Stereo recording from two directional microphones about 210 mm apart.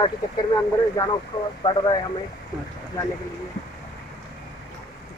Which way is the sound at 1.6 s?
20° left (ahead or behind).